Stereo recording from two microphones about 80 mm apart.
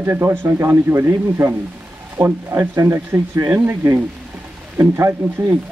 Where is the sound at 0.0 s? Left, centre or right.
Right.